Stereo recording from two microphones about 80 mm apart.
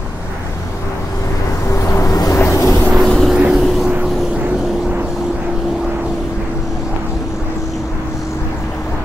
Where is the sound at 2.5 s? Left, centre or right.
Left.